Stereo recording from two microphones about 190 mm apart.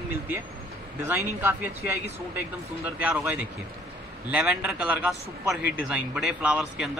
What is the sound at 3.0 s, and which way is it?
A man's voice, 10° right (ahead or behind).